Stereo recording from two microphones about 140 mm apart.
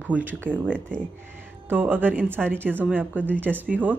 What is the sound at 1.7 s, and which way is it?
Speech, 15° right (ahead or behind).